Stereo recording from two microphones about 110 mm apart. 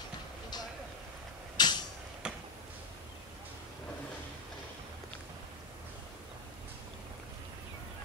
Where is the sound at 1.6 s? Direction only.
40° left (ahead or behind).